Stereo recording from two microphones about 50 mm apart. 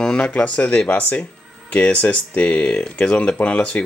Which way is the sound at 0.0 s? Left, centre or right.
Centre.